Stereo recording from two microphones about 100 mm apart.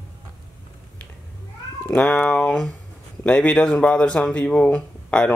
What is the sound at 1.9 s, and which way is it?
Speech, 15° left (ahead or behind).